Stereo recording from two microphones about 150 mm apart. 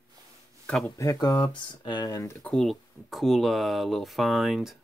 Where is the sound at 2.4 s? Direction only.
Centre (ahead or behind).